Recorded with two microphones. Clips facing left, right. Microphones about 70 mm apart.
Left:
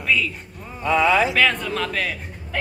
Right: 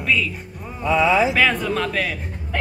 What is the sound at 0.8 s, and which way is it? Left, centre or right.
Speech, left.